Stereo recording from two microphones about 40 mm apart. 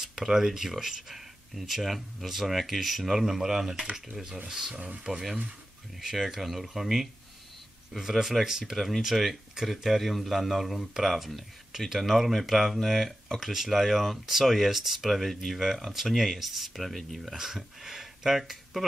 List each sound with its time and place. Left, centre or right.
0.0 s a man's voice: centre
8.7 s a man's voice: centre
17.2 s speech: centre